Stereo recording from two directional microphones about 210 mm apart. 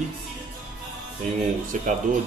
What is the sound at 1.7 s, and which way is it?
Speech, 35° right (ahead or behind).